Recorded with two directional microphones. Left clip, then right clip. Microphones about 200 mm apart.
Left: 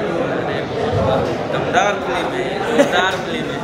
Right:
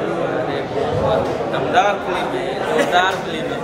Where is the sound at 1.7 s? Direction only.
20° right (ahead or behind).